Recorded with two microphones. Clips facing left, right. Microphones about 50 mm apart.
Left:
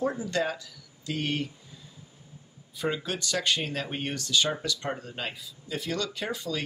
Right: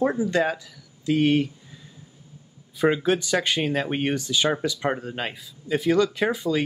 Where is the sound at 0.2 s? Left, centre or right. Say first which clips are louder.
Right 6 dB; centre.